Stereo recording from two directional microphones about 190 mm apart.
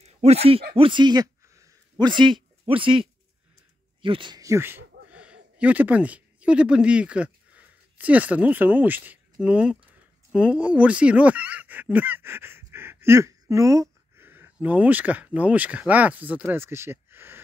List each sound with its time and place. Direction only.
0.0 s speech: 35° right (ahead or behind); by 17.4 s 10° right (ahead or behind)